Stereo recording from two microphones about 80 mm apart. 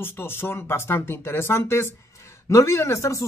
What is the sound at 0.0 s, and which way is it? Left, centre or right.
Speech, left.